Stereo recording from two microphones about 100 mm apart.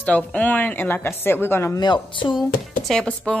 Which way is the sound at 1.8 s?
55° left (ahead or behind).